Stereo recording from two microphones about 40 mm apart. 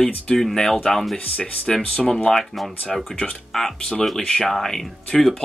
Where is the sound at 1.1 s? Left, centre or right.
Left.